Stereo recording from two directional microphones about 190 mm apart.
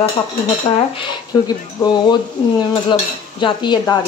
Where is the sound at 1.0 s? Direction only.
20° left (ahead or behind).